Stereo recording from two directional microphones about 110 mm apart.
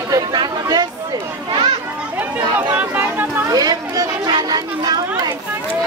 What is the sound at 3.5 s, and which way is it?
Chatter, 35° right (ahead or behind).